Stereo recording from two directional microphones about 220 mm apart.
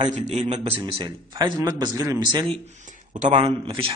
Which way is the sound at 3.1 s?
35° right (ahead or behind).